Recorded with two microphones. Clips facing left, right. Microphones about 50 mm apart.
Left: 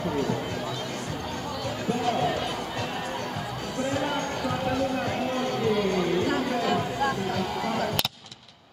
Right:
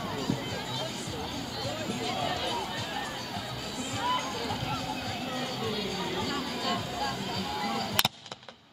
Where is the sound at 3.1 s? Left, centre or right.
Left.